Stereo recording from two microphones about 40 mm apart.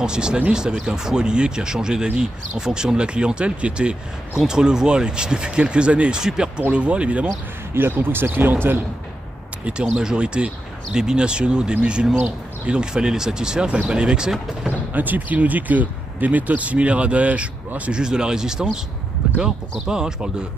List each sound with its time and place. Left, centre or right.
0.0 s speech: right
4.4 s speech: centre
7.7 s speech: right
9.7 s speech: right
15.0 s speech: right
18.0 s speech: centre